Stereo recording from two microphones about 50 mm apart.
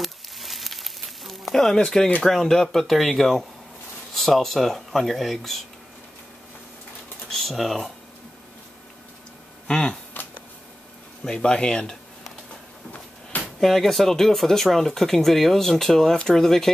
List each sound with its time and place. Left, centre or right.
0.0 s frying: centre
2.4 s speech: centre
7.2 s speech: centre
9.7 s speech: centre
10.1 s a sound: left
11.2 s speech: centre
13.6 s speech: centre